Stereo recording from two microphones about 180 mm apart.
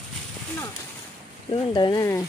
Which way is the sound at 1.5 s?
25° left (ahead or behind).